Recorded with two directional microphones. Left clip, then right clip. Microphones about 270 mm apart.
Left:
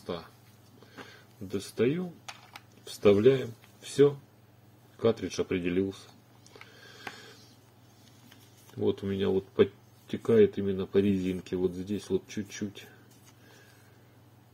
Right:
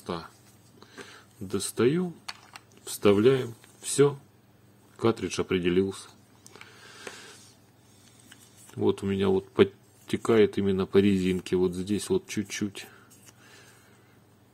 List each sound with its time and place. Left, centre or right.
1.1 s speech: right
4.9 s a sound: right
8.8 s speech: right